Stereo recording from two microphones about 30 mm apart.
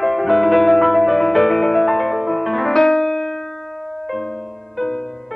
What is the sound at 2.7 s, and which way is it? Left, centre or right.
Music, centre.